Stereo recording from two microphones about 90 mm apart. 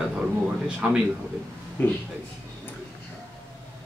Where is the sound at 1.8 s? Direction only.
20° left (ahead or behind).